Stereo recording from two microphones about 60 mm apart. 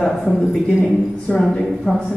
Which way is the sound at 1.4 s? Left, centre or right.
Centre.